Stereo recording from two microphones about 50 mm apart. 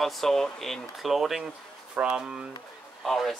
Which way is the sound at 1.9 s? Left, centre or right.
Right.